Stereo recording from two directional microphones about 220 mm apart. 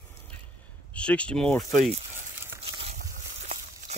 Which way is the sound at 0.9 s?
5° left (ahead or behind).